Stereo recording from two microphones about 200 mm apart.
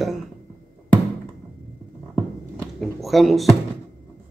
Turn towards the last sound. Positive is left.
turn(degrees=0)  # may be behind; listen again after turning